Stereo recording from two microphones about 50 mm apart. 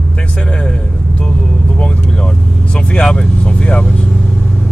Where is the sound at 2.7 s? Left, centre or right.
Left.